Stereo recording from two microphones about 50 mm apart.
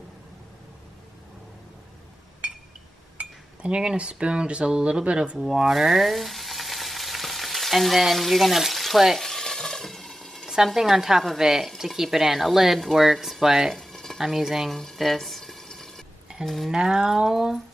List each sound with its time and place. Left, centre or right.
2.4 s a sound: right
3.2 s speech: right
5.5 s frying: centre
9.2 s stir: centre
10.5 s a woman's voice: centre
13.7 s a sound: centre
14.2 s speech: centre
16.7 s a woman's voice: centre